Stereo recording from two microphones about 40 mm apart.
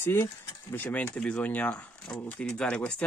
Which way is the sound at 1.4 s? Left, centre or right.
Left.